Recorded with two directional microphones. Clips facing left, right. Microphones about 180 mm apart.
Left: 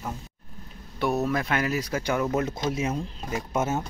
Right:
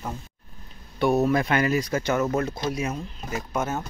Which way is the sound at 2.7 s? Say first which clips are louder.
Even; 25° left (ahead or behind).